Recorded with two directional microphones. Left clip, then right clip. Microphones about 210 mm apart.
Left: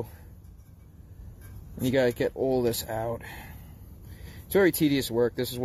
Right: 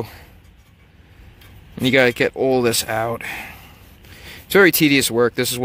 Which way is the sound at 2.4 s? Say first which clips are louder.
Right 9 dB; 35° right (ahead or behind).